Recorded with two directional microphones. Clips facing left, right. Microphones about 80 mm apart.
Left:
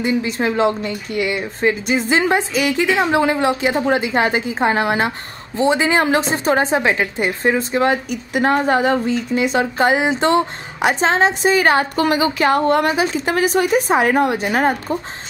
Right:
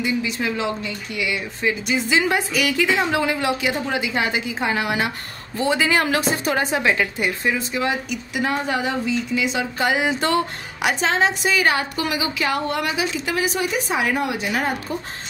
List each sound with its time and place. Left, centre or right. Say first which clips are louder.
0.0 s a woman's voice: left 4 dB; left
5.6 s a woman's voice: left 4 dB; left